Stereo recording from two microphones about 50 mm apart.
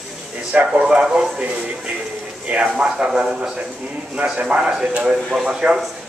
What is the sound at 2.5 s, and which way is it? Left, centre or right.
Speech, right.